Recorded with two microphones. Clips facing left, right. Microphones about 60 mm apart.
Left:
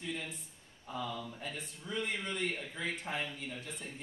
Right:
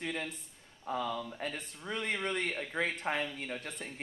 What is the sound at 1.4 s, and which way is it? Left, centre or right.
Speech, right.